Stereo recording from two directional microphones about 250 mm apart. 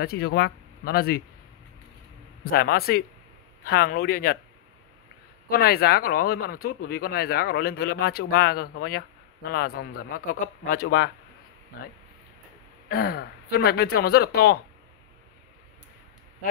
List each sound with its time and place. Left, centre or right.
0.0 s speech: left
2.5 s speech: left
5.5 s speech: left
12.8 s speech: left